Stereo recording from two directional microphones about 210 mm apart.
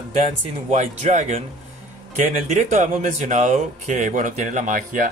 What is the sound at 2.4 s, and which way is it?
Speech, 35° right (ahead or behind).